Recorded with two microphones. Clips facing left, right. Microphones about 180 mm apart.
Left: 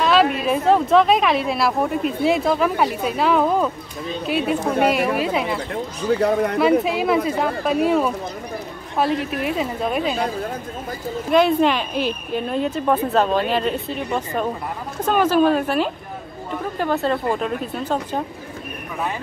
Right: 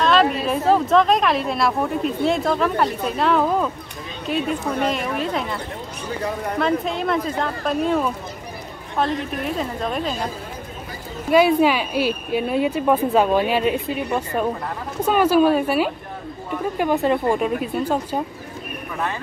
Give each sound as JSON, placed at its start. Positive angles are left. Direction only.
{"t": 0.0, "sound": "a woman's voice", "side_deg": 5}
{"t": 6.1, "sound": "a man's voice", "side_deg": 70}
{"t": 6.6, "sound": "a woman's voice", "side_deg": 5}
{"t": 11.2, "sound": "speech", "side_deg": -5}